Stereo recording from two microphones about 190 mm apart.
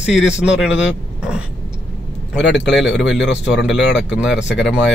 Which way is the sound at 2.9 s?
Centre (ahead or behind).